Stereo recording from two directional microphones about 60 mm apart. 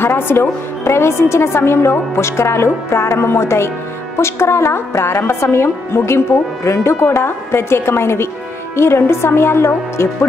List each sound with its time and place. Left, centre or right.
0.0 s a woman's voice: left